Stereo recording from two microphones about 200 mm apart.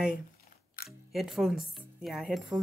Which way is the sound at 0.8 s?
45° left (ahead or behind).